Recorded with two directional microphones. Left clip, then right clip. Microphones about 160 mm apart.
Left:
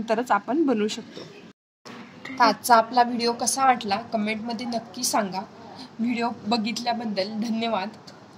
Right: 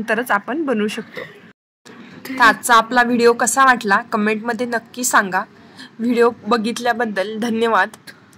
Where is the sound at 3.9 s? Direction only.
20° right (ahead or behind).